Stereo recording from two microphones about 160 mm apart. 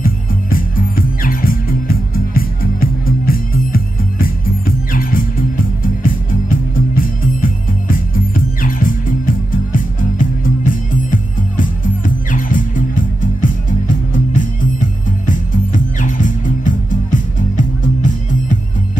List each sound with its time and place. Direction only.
0.0 s music: 60° left (ahead or behind)